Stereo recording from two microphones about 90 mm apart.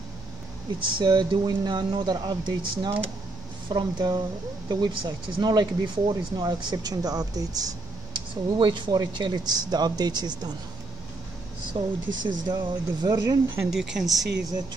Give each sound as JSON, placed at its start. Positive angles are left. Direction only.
{"t": 0.8, "sound": "speech", "side_deg": -60}
{"t": 8.5, "sound": "speech", "side_deg": -65}
{"t": 11.7, "sound": "speech", "side_deg": -60}
{"t": 13.7, "sound": "speech", "side_deg": -5}